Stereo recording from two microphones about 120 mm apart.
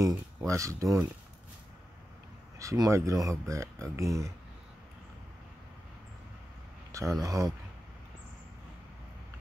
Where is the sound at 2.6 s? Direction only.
25° right (ahead or behind).